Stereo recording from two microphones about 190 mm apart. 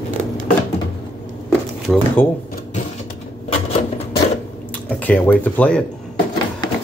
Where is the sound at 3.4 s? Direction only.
30° left (ahead or behind).